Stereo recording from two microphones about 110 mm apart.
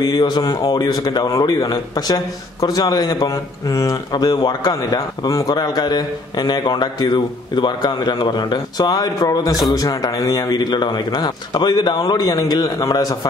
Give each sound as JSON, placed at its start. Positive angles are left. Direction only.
{"t": 0.0, "sound": "a man's voice", "side_deg": 40}